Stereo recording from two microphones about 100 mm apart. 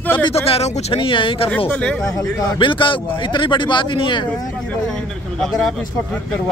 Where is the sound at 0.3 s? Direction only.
90° left.